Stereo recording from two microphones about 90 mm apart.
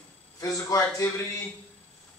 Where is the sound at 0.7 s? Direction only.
35° left (ahead or behind).